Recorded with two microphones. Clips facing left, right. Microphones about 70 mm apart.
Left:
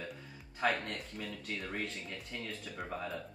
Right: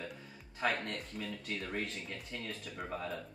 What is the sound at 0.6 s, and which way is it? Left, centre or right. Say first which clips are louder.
Speech: left 1 dB; centre.